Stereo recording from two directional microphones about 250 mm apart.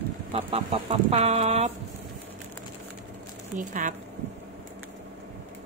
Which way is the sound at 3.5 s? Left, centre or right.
Right.